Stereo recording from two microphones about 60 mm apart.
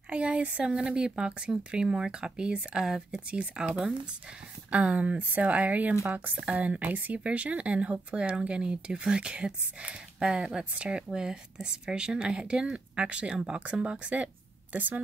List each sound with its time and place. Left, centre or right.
0.1 s speech: centre